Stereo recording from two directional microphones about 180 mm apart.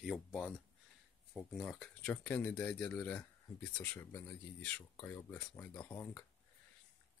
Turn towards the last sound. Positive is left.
turn(degrees=15)  # may be behind; listen again after turning